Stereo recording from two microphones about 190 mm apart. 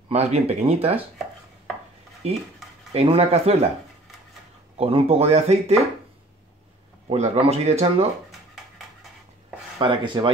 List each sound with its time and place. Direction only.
0.1 s speech: 35° right (ahead or behind)
2.2 s speech: 35° right (ahead or behind)
4.7 s speech: 30° right (ahead or behind)
7.1 s speech: 30° right (ahead or behind)
9.8 s speech: 25° right (ahead or behind)